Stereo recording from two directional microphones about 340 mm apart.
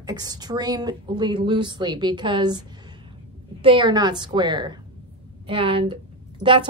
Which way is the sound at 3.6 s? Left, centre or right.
Centre.